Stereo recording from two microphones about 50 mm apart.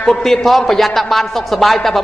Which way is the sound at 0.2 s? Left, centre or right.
Centre.